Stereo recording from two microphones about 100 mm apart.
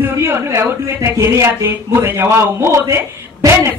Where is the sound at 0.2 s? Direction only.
25° right (ahead or behind).